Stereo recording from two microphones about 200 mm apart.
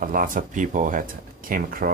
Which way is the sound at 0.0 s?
45° right (ahead or behind).